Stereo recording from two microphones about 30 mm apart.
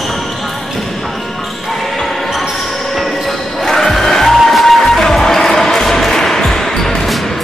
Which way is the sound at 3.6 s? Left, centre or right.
Centre.